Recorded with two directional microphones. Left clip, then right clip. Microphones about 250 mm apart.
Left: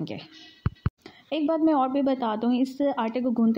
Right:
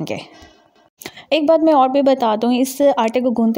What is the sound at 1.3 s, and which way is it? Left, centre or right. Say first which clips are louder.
A woman's voice: right 11 dB; right.